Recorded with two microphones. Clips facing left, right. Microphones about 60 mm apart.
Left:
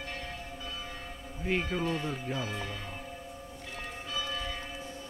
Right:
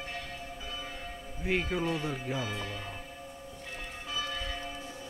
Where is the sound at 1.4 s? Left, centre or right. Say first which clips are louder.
Even; centre.